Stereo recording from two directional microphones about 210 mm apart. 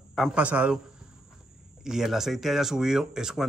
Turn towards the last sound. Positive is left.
turn(degrees=-5)  # may be behind; listen again after turning